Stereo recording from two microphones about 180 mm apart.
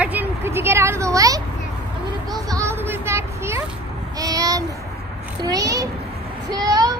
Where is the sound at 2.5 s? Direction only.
15° right (ahead or behind).